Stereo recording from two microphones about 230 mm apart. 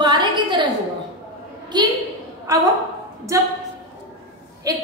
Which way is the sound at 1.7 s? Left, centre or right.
Centre.